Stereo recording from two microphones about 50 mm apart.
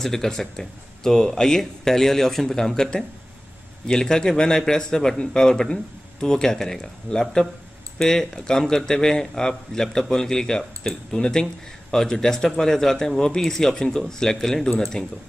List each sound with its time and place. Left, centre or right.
0.0 s speech: centre